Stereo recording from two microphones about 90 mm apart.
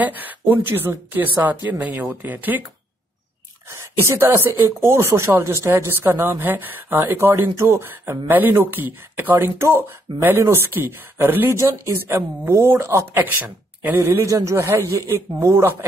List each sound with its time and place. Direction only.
0.0 s speech: 20° right (ahead or behind)
4.1 s speech: 30° right (ahead or behind)
10.1 s speech: 70° right (ahead or behind)
10.4 s speech: 25° right (ahead or behind)